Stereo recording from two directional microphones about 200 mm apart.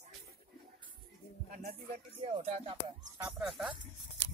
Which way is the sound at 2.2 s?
30° right (ahead or behind).